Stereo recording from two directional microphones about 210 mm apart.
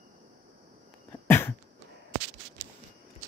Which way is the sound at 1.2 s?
10° left (ahead or behind).